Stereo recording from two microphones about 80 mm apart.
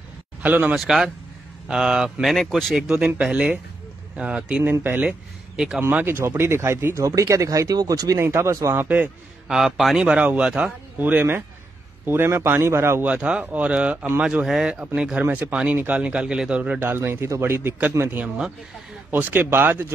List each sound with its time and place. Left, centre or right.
0.4 s speech: centre
0.7 s speech: centre
5.8 s speech: right
8.2 s speech: right
8.8 s a man's voice: centre
9.5 s speech: centre
11.0 s a man's voice: right
13.0 s speech: centre
15.2 s a man's voice: right
15.5 s speech: centre
16.8 s a man's voice: right